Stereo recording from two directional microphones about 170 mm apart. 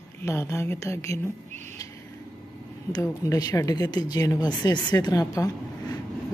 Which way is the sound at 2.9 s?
20° left (ahead or behind).